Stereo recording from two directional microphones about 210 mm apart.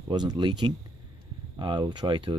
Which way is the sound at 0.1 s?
20° right (ahead or behind).